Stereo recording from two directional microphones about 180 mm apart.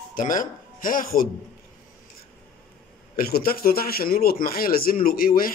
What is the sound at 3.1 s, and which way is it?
A man's voice, 55° left (ahead or behind).